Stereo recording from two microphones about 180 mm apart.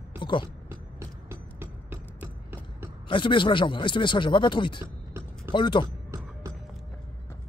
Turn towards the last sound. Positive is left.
turn(degrees=25)  # may be behind; listen again after turning